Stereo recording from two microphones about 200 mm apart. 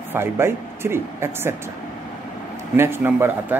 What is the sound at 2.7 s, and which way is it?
Speech, 10° right (ahead or behind).